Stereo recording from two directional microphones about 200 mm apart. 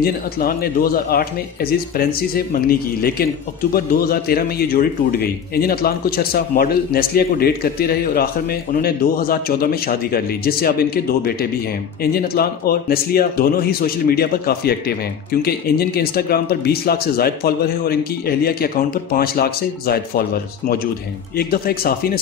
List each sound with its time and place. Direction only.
0.0 s a man's voice: 50° left (ahead or behind)